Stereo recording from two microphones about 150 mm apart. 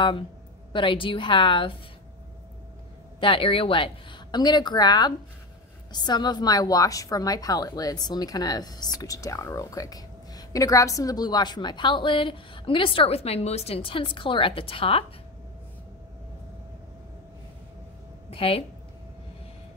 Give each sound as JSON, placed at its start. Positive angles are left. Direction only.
{"t": 0.7, "sound": "a woman's voice", "side_deg": 35}
{"t": 3.2, "sound": "a woman's voice", "side_deg": 35}
{"t": 18.3, "sound": "speech", "side_deg": 40}